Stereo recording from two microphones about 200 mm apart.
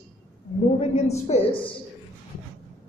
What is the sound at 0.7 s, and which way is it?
A woman's voice, 35° left (ahead or behind).